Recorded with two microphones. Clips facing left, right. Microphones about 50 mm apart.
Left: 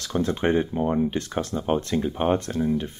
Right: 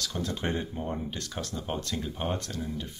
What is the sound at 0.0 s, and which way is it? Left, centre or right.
Speech, left.